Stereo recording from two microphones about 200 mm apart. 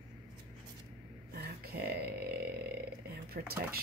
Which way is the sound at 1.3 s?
50° right (ahead or behind).